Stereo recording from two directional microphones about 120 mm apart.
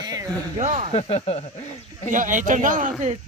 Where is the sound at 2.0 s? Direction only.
90° right.